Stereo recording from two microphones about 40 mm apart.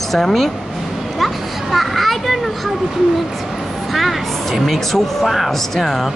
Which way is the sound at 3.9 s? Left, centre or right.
Centre.